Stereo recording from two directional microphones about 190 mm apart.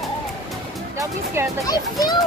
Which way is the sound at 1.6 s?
20° left (ahead or behind).